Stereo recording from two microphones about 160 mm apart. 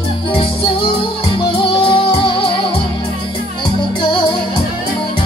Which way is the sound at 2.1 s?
30° left (ahead or behind).